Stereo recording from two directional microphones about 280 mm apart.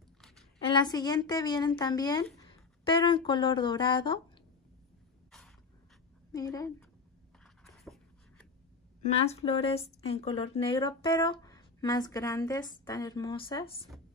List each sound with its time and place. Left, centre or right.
0.6 s a woman's voice: centre
6.3 s speech: centre
7.6 s writing: centre
9.0 s speech: left